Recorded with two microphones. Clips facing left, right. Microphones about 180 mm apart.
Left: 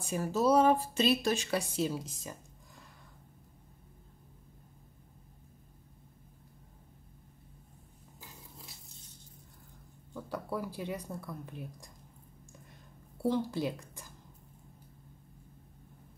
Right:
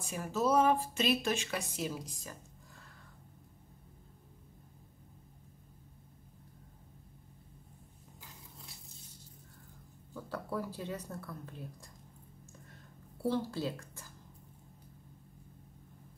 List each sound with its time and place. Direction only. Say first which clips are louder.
0.0 s speech: left 4 dB; 35° left (ahead or behind)
10.3 s speech: left 1 dB; 10° left (ahead or behind)
13.2 s speech: left 3 dB; 15° left (ahead or behind)